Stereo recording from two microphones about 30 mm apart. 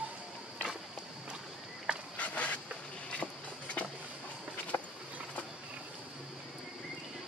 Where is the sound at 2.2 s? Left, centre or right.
Left.